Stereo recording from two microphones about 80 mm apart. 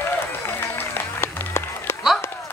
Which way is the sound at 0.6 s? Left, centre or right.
Left.